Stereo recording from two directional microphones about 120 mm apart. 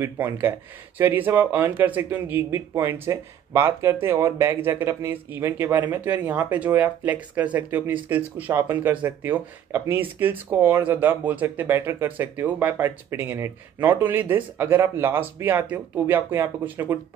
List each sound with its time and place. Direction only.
0.0 s speech: 20° right (ahead or behind)